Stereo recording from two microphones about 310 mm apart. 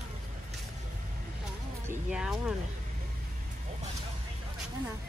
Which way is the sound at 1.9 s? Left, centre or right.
Centre.